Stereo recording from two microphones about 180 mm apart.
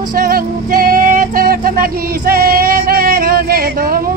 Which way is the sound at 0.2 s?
55° right (ahead or behind).